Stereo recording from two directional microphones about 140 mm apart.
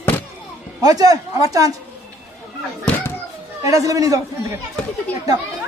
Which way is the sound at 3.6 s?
25° right (ahead or behind).